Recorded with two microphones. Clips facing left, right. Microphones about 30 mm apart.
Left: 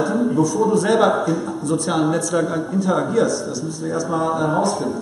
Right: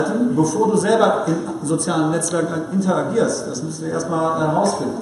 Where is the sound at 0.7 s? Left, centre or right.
Centre.